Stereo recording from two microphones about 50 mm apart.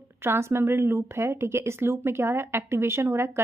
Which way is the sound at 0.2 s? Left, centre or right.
Right.